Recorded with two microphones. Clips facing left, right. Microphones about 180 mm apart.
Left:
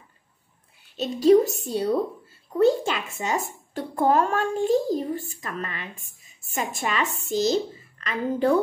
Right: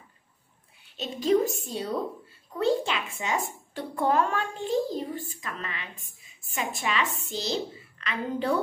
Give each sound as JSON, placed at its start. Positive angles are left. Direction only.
{"t": 0.9, "sound": "a woman's voice", "side_deg": 40}
{"t": 2.6, "sound": "speech", "side_deg": 45}